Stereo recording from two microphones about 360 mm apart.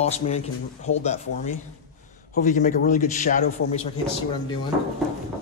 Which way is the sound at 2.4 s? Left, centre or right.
Left.